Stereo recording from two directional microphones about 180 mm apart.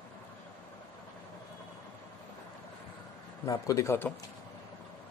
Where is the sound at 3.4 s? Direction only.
20° left (ahead or behind).